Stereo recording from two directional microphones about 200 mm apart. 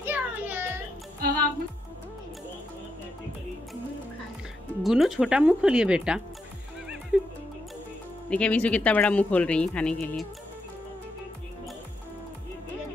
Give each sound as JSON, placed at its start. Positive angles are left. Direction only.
{"t": 0.0, "sound": "a sound", "side_deg": -10}
{"t": 1.2, "sound": "music", "side_deg": -50}
{"t": 4.8, "sound": "speech", "side_deg": 0}
{"t": 7.1, "sound": "music", "side_deg": 0}
{"t": 8.3, "sound": "a woman's voice", "side_deg": 5}